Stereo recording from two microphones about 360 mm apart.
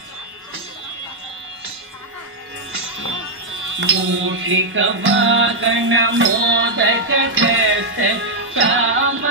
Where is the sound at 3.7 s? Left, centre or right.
Right.